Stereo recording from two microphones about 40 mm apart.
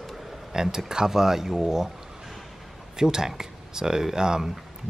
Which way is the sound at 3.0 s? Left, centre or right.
Centre.